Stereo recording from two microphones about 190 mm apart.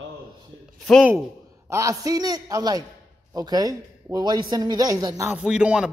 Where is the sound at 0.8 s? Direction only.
Centre (ahead or behind).